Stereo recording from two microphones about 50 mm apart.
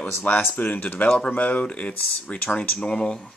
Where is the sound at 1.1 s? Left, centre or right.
Left.